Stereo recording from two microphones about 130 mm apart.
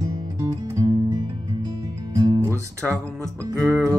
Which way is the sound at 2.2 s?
25° right (ahead or behind).